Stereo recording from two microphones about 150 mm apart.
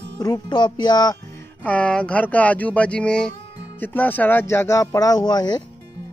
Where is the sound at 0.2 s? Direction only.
25° left (ahead or behind).